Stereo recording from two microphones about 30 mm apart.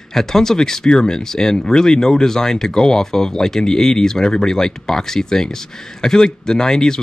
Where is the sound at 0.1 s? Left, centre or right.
Centre.